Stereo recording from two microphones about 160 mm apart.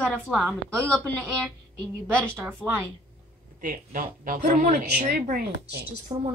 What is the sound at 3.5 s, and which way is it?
Speech, 60° right (ahead or behind).